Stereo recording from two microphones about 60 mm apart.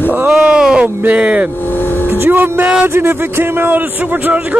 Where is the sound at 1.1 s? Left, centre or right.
Centre.